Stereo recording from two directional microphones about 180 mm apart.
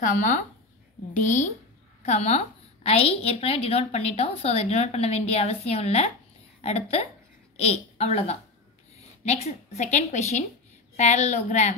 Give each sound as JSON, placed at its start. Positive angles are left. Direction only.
{"t": 0.0, "sound": "a woman's voice", "side_deg": 45}